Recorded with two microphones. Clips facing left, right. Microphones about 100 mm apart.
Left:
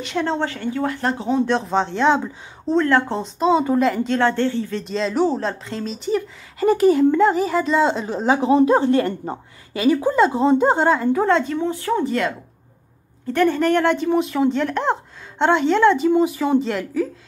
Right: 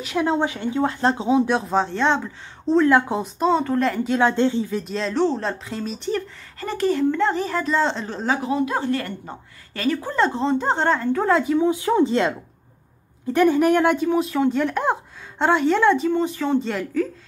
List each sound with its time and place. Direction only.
0.0 s speech: 5° right (ahead or behind)
4.8 s speech: centre (ahead or behind)
5.1 s speech: 10° left (ahead or behind)
5.4 s speech: centre (ahead or behind); by 9.4 s 30° left (ahead or behind)
9.8 s speech: 15° left (ahead or behind)
11.2 s speech: 5° right (ahead or behind)
16.1 s speech: 10° left (ahead or behind)